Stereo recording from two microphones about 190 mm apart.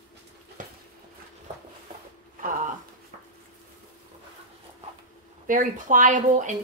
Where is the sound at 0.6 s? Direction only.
45° right (ahead or behind).